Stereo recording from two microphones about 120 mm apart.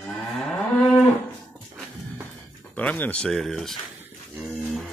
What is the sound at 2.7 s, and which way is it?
Speech, 15° left (ahead or behind).